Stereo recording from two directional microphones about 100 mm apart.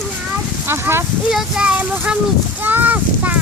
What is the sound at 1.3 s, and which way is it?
Speech, 5° right (ahead or behind).